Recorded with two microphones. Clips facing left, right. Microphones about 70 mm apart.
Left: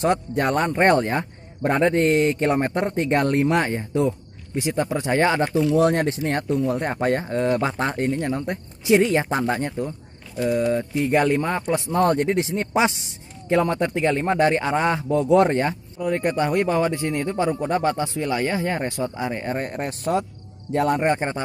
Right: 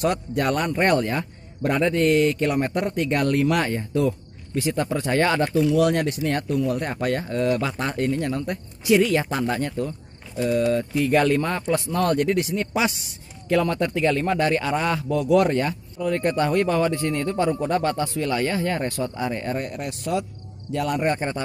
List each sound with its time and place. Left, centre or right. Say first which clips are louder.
0.0 s speech: left 2 dB; left
5.8 s speech: left 1 dB; left
19.6 s speech: left 3 dB; left